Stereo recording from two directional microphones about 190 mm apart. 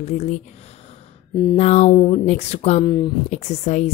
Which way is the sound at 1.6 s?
35° left (ahead or behind).